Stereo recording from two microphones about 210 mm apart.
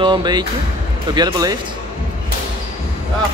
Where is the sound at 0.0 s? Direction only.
20° right (ahead or behind).